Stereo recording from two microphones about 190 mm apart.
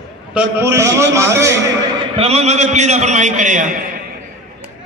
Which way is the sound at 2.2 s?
35° right (ahead or behind).